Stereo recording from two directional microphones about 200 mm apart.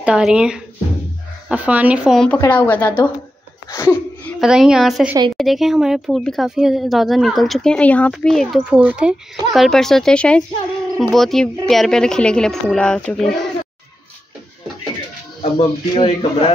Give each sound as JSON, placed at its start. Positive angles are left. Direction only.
{"t": 0.0, "sound": "a woman's voice", "side_deg": -5}
{"t": 4.4, "sound": "speech", "side_deg": -5}
{"t": 15.5, "sound": "a man's voice", "side_deg": 30}